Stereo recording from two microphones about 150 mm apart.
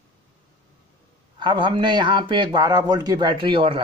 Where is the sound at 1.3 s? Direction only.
35° right (ahead or behind).